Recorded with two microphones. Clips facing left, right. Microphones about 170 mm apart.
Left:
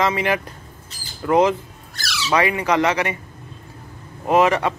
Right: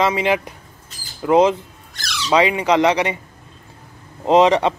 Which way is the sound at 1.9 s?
5° left (ahead or behind).